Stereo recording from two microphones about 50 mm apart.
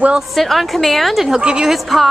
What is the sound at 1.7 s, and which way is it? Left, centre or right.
Speech, centre.